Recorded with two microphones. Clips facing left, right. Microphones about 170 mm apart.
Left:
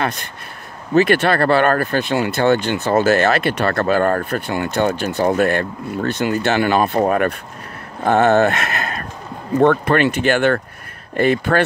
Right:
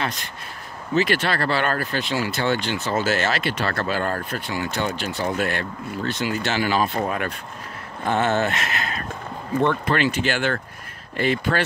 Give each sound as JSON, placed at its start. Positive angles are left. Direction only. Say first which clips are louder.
{"t": 0.9, "sound": "speech", "louder": "left 7 dB", "side_deg": 55}